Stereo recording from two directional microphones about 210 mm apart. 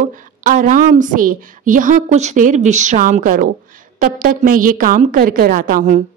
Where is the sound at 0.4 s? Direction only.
40° right (ahead or behind).